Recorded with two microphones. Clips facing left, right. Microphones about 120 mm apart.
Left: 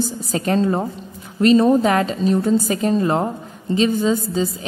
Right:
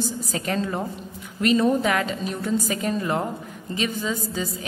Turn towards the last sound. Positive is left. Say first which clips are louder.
# left 8 dB
turn(degrees=30)  # may be behind; listen again after turning